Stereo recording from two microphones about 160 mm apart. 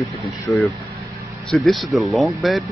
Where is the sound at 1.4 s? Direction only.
Centre (ahead or behind).